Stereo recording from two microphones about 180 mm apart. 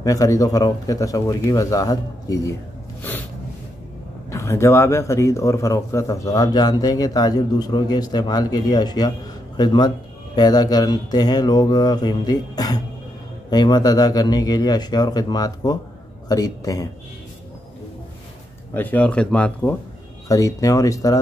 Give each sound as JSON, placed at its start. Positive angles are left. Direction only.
{"t": 0.0, "sound": "a man's voice", "side_deg": 20}
{"t": 3.0, "sound": "a sound", "side_deg": 10}
{"t": 4.3, "sound": "a man's voice", "side_deg": 15}
{"t": 18.7, "sound": "speech", "side_deg": 10}
{"t": 20.2, "sound": "a man's voice", "side_deg": 20}